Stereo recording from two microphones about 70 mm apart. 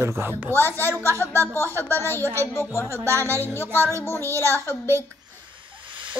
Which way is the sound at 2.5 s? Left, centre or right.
Left.